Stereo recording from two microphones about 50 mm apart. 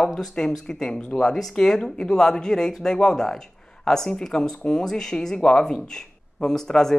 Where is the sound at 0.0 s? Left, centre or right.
Centre.